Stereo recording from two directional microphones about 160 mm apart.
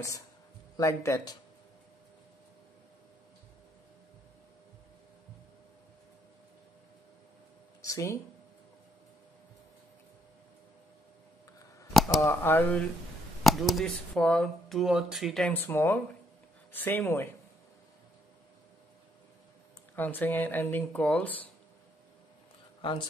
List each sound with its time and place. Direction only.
0.7 s speech: 20° left (ahead or behind)
7.9 s speech: 20° left (ahead or behind)
11.9 s a sound: centre (ahead or behind)
12.2 s speech: 15° left (ahead or behind)
13.4 s speech: centre (ahead or behind)
20.0 s speech: 10° left (ahead or behind)
22.8 s speech: 30° left (ahead or behind)